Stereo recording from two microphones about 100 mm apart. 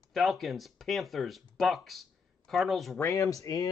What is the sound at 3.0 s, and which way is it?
Speech, 35° left (ahead or behind).